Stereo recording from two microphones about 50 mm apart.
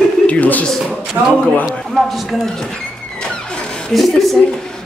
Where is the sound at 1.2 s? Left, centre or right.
Right.